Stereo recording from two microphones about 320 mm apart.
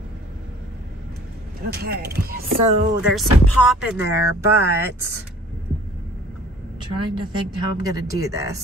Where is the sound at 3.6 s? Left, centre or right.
Centre.